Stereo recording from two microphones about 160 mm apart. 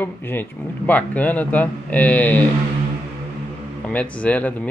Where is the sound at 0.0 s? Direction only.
15° left (ahead or behind).